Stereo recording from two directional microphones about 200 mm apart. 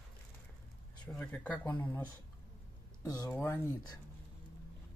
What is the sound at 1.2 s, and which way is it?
Speech, 5° left (ahead or behind).